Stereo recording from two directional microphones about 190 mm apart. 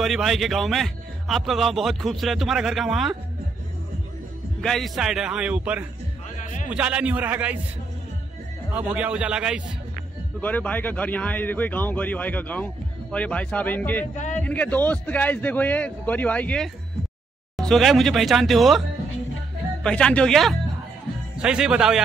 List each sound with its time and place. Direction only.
0.0 s a man's voice: centre (ahead or behind)
4.6 s a man's voice: centre (ahead or behind)
6.4 s a sound: 40° left (ahead or behind)
6.7 s a man's voice: 5° right (ahead or behind)
8.7 s a man's voice: 5° right (ahead or behind)
10.4 s speech: 10° left (ahead or behind)
14.1 s speech: 40° left (ahead or behind)
14.4 s a man's voice: 10° left (ahead or behind)
19.8 s a man's voice: 5° left (ahead or behind)